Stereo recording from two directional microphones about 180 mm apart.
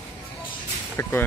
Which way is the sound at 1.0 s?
10° left (ahead or behind).